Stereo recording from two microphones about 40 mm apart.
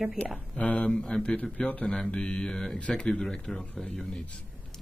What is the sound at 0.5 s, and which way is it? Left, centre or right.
Speech, left.